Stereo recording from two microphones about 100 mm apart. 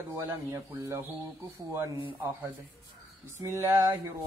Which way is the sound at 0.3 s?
25° right (ahead or behind).